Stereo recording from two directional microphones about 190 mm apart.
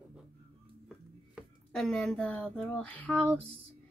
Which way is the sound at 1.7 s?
5° left (ahead or behind).